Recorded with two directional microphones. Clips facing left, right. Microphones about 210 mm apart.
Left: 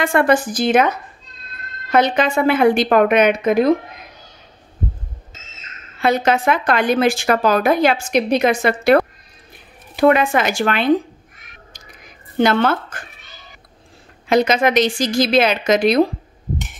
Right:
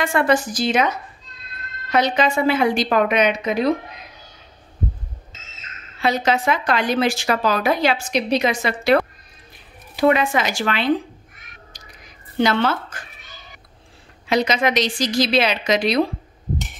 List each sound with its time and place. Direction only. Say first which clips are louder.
0.0 s a woman's voice: left 3 dB; 55° left (ahead or behind)
5.9 s a woman's voice: left 3 dB; 55° left (ahead or behind)
12.4 s a woman's voice: left 3 dB; 50° left (ahead or behind)
14.2 s a woman's voice: left 4 dB; 50° left (ahead or behind)